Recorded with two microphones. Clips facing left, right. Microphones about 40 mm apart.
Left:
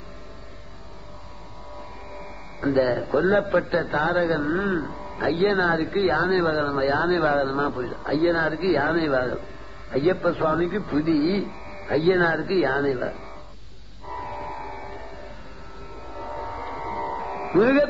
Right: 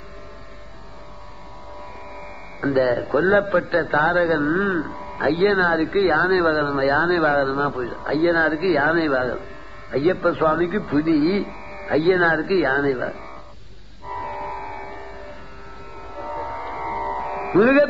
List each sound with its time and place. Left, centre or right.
2.2 s a man's voice: centre
14.0 s music: centre
16.2 s music: centre